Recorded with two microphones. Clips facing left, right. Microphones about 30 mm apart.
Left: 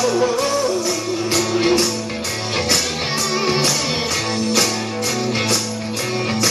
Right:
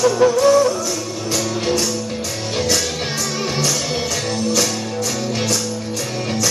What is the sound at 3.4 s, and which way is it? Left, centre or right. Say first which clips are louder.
Music: left 3 dB; left.